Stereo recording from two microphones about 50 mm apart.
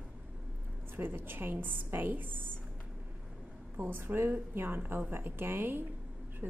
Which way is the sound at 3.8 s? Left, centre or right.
Right.